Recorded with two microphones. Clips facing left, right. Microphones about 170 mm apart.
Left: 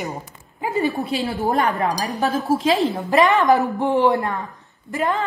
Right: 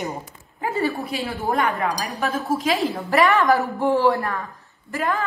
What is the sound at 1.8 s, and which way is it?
Speech, 40° left (ahead or behind).